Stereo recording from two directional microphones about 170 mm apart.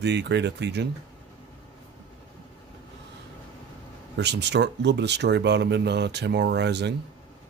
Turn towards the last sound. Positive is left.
turn(degrees=-90)